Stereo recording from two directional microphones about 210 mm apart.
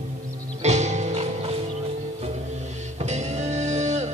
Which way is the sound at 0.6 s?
30° right (ahead or behind).